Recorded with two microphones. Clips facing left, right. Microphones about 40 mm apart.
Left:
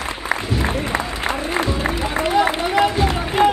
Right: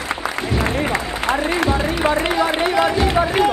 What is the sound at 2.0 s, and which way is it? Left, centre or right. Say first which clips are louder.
Music: right 1 dB; right.